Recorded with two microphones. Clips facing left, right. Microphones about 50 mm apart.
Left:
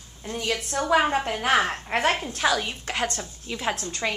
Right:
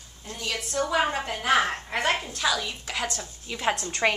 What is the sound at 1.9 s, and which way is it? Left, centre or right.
A woman's voice, left.